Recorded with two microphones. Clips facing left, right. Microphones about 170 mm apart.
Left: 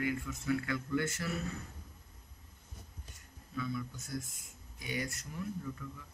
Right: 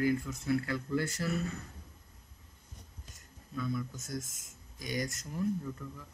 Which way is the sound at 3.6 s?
45° right (ahead or behind).